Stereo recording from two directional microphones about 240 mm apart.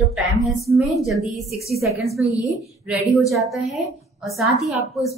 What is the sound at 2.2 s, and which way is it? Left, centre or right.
Speech, centre.